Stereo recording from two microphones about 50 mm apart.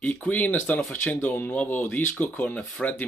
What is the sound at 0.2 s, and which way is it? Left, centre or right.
Speech, left.